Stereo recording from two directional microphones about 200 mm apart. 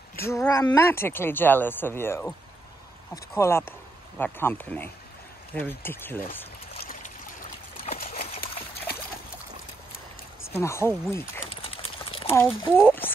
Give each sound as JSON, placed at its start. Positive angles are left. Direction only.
{"t": 0.2, "sound": "speech", "side_deg": 15}
{"t": 3.3, "sound": "speech", "side_deg": 10}
{"t": 10.5, "sound": "speech", "side_deg": 15}
{"t": 11.6, "sound": "clip-clop", "side_deg": 30}
{"t": 12.4, "sound": "speech", "side_deg": 10}